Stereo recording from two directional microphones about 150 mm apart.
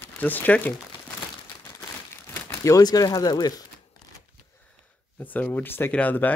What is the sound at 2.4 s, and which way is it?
Speech, 20° left (ahead or behind).